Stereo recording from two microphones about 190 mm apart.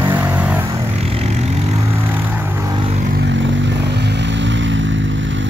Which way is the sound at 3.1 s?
70° right (ahead or behind).